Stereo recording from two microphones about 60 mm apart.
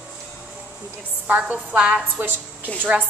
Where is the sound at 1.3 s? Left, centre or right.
Right.